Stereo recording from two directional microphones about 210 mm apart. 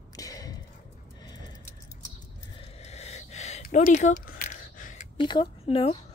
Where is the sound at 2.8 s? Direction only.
30° left (ahead or behind).